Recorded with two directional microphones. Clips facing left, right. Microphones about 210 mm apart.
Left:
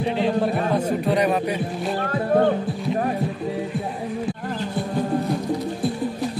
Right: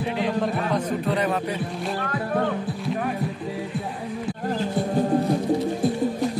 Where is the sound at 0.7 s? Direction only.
10° left (ahead or behind).